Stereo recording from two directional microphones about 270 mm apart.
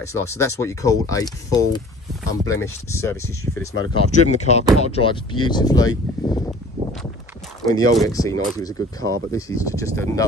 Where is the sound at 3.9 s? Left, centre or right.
Left.